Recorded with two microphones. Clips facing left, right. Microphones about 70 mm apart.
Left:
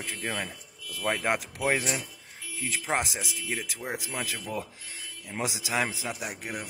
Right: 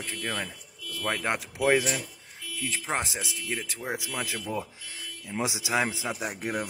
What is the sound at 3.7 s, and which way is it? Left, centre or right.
Speech, centre.